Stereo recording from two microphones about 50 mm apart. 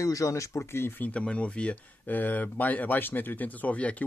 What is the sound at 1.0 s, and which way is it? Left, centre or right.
Speech, left.